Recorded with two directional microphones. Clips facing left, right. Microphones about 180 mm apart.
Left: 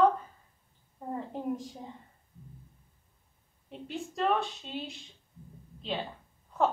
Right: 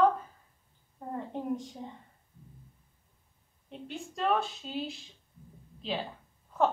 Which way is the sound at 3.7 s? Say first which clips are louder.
Left 2 dB; centre (ahead or behind).